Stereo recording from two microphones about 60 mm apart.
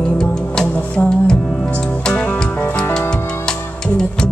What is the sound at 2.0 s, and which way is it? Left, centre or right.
Music, centre.